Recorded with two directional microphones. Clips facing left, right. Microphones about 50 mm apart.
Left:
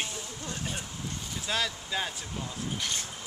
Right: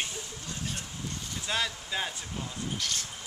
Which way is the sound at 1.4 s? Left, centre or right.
Centre.